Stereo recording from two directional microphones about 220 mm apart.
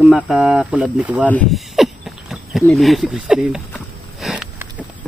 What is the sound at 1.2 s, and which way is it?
Speech, 5° left (ahead or behind).